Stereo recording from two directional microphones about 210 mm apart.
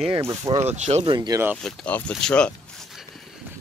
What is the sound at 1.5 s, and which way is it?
Speech, 5° left (ahead or behind).